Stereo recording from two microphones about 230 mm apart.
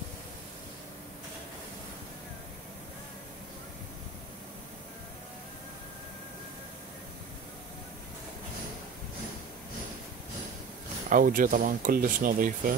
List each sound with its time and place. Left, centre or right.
11.1 s speech: right